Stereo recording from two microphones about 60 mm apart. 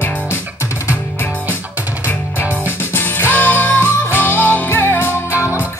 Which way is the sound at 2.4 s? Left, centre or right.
Right.